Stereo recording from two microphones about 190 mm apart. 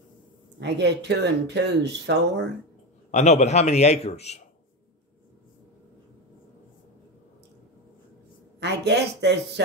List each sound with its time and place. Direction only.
0.6 s speech: 65° right (ahead or behind)
3.1 s a man's voice: 35° left (ahead or behind)
8.5 s speech: 60° right (ahead or behind)